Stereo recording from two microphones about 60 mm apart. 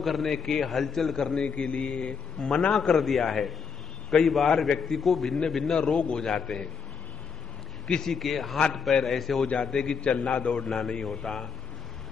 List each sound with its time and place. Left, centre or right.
0.0 s a man's voice: centre
7.8 s a man's voice: centre